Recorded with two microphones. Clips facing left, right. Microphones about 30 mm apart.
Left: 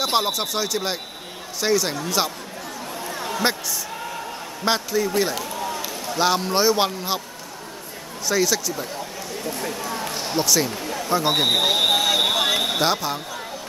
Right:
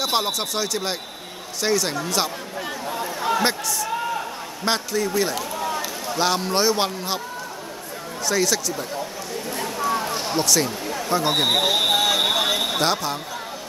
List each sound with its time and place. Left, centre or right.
0.0 s speech: centre
4.6 s a man's voice: centre
8.3 s speech: centre